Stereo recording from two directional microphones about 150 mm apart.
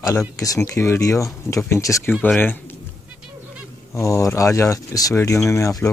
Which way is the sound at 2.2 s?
10° left (ahead or behind).